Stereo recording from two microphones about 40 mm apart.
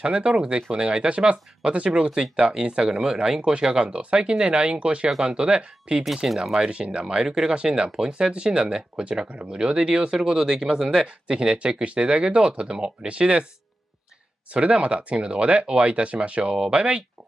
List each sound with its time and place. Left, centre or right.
0.0 s speech: right
6.2 s speech: centre
6.7 s speech: right
7.2 s speech: centre
7.5 s speech: right
10.1 s speech: centre
14.5 s speech: right